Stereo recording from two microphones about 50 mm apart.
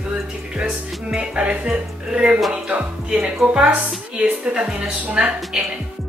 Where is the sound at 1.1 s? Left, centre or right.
Right.